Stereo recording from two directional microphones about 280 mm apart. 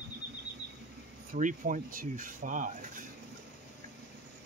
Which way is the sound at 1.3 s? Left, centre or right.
Right.